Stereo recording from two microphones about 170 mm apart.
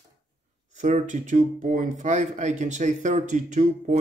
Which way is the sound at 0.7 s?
45° right (ahead or behind).